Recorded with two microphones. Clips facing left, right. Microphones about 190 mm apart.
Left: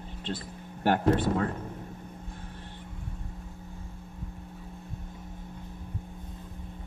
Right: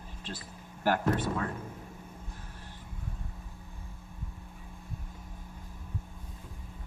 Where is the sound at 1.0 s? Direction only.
30° left (ahead or behind).